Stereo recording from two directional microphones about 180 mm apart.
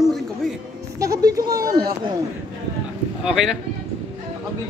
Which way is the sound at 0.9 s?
20° right (ahead or behind).